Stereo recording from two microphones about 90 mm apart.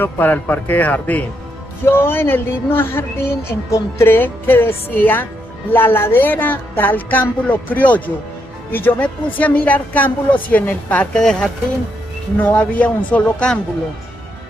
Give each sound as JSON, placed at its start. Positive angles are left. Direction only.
{"t": 0.0, "sound": "a woman's voice", "side_deg": 20}
{"t": 11.1, "sound": "a woman's voice", "side_deg": 5}
{"t": 12.4, "sound": "a woman's voice", "side_deg": 20}